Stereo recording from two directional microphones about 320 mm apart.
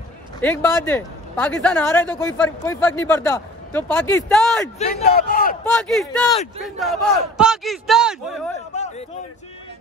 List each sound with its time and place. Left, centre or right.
0.4 s speech: centre
4.7 s a man's voice: left
5.8 s a man's voice: centre